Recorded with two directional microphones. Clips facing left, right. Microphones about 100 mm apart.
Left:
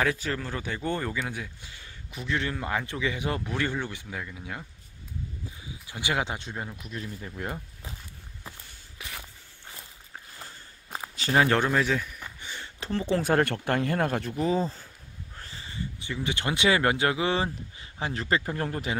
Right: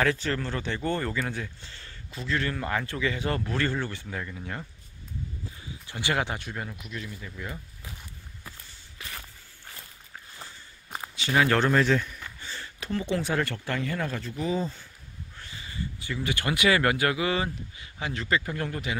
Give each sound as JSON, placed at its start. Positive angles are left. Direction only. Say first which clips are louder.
{"t": 0.0, "sound": "a man's voice", "louder": "right 2 dB", "side_deg": 10}
{"t": 5.9, "sound": "a man's voice", "louder": "right 1 dB", "side_deg": 15}
{"t": 6.9, "sound": "speech", "louder": "left 1 dB", "side_deg": 35}
{"t": 8.5, "sound": "walk", "louder": "left 2 dB", "side_deg": 15}
{"t": 10.4, "sound": "walk", "louder": "even", "side_deg": 0}
{"t": 11.1, "sound": "a sound", "louder": "left 1 dB", "side_deg": 35}
{"t": 11.4, "sound": "a man's voice", "louder": "right 1 dB", "side_deg": 20}
{"t": 11.7, "sound": "a man's voice", "louder": "right 3 dB", "side_deg": 5}
{"t": 12.4, "sound": "a sound", "louder": "even", "side_deg": 20}
{"t": 13.2, "sound": "speech", "louder": "left 4 dB", "side_deg": 55}
{"t": 14.4, "sound": "speech", "louder": "left 2 dB", "side_deg": 35}